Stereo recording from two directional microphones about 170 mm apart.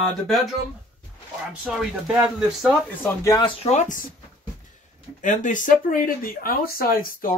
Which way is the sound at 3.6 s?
40° left (ahead or behind).